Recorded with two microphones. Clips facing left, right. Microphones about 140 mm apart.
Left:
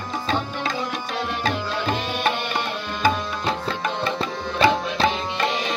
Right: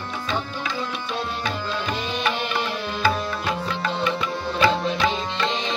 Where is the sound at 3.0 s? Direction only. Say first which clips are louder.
Left 2 dB; 25° left (ahead or behind).